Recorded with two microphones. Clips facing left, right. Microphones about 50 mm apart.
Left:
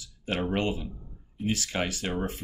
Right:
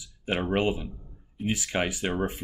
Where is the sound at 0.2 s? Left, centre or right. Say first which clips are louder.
Right 2 dB; centre.